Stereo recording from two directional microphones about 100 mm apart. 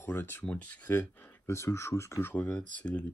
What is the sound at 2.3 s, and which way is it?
Speech, 15° left (ahead or behind).